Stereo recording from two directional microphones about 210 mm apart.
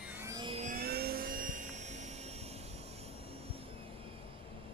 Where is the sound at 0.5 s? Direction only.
40° right (ahead or behind).